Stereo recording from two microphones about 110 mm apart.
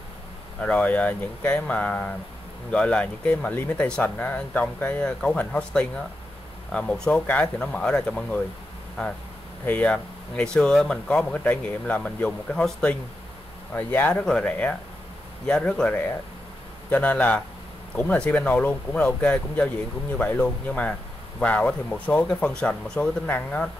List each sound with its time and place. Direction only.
0.6 s speech: 10° left (ahead or behind)
9.7 s speech: 15° left (ahead or behind)